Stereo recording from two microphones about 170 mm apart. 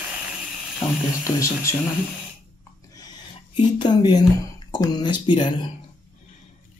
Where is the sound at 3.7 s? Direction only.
25° left (ahead or behind).